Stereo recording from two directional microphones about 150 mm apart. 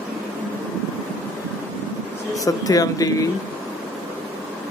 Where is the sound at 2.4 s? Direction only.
25° left (ahead or behind).